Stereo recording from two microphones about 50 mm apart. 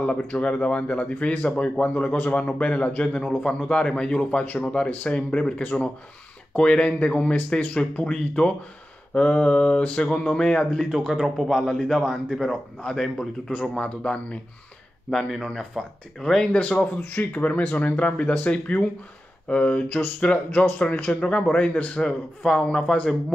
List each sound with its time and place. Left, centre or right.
0.0 s a man's voice: left
10.9 s speech: centre
12.4 s speech: centre
13.5 s a man's voice: left
15.0 s speech: centre
16.5 s a man's voice: left; by 22.9 s centre